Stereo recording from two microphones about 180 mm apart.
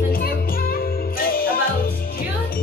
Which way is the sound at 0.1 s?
55° left (ahead or behind).